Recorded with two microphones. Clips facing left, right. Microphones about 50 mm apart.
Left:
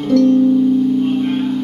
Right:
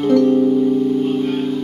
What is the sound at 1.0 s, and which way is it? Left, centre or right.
Music, left.